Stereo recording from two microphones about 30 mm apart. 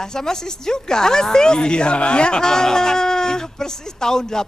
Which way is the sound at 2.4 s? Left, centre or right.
Left.